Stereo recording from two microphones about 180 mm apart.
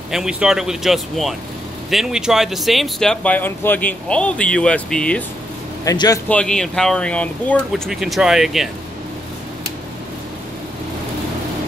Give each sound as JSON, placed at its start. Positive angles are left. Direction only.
{"t": 0.1, "sound": "speech", "side_deg": -5}
{"t": 5.9, "sound": "speech", "side_deg": 20}
{"t": 6.2, "sound": "speech", "side_deg": 5}